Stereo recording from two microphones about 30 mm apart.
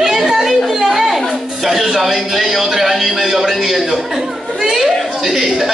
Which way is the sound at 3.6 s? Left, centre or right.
Centre.